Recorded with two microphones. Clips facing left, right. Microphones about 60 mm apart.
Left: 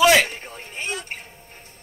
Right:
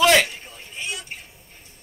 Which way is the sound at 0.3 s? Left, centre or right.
Left.